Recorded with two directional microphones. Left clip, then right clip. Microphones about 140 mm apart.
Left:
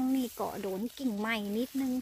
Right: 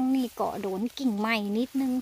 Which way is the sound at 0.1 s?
25° right (ahead or behind).